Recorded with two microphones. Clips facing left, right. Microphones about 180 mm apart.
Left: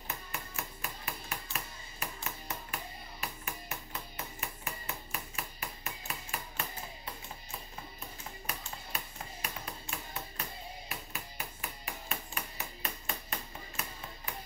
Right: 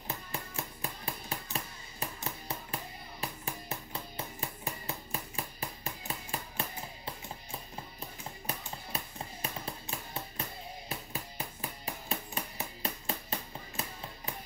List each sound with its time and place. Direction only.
0.1 s music: 30° right (ahead or behind)
4.4 s hammer: 30° right (ahead or behind)
8.5 s music: 30° right (ahead or behind)